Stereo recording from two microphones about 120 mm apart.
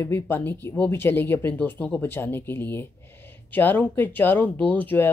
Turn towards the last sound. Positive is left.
turn(degrees=15)  # may be behind; listen again after turning